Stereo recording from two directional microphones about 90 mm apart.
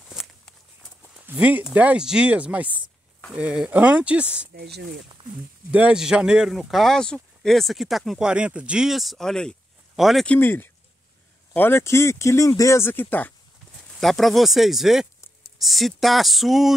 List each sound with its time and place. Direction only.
0.1 s a sound: centre (ahead or behind)
1.1 s speech: 15° right (ahead or behind)
5.7 s speech: 15° right (ahead or behind)
8.3 s speech: 10° right (ahead or behind)
10.2 s speech: 20° left (ahead or behind)
13.9 s speech: 5° left (ahead or behind)